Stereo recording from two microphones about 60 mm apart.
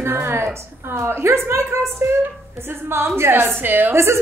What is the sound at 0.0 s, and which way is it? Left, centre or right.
A woman's voice, right.